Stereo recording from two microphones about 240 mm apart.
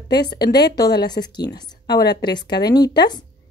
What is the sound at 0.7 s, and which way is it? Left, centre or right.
A woman's voice, centre.